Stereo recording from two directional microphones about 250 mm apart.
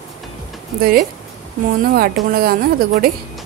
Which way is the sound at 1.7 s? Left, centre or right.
Right.